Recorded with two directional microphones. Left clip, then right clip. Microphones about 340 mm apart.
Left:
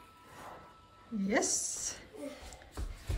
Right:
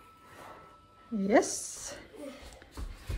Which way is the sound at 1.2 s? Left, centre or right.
Centre.